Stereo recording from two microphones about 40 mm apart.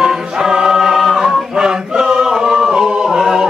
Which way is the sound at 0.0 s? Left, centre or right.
Centre.